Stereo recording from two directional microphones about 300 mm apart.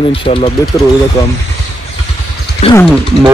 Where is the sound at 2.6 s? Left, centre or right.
Centre.